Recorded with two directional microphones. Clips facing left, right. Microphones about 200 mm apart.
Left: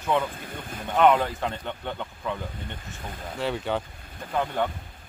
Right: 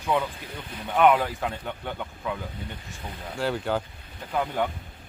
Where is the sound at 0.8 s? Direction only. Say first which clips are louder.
Even; 10° right (ahead or behind).